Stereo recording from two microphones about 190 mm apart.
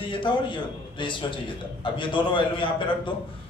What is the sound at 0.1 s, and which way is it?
A man's voice, 25° left (ahead or behind).